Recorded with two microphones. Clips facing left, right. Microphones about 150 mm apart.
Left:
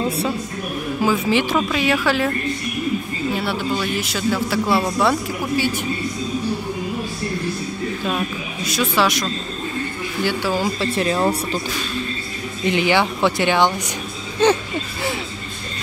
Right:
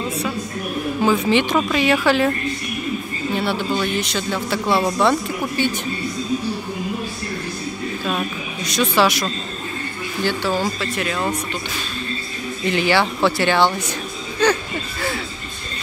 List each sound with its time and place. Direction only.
1.0 s a man's voice: 5° left (ahead or behind)
3.3 s a man's voice: centre (ahead or behind)
8.6 s a man's voice: centre (ahead or behind)
10.2 s speech: 10° left (ahead or behind)
10.8 s speech: 30° left (ahead or behind)
12.6 s speech: 20° left (ahead or behind)